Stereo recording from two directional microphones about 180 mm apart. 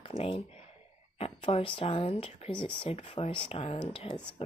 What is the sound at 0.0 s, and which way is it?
Speech, 30° left (ahead or behind).